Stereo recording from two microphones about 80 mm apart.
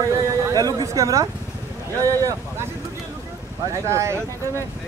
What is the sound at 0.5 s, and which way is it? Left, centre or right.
Speech, right.